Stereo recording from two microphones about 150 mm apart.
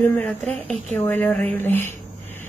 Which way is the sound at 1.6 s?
15° left (ahead or behind).